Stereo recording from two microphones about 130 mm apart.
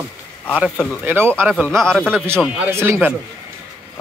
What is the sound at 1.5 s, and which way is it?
Speech, centre (ahead or behind).